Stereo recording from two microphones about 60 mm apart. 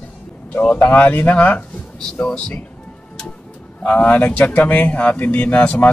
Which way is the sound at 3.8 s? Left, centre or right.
Left.